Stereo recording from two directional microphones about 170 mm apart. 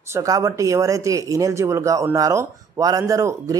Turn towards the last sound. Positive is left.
turn(degrees=-20)  # may be behind; listen again after turning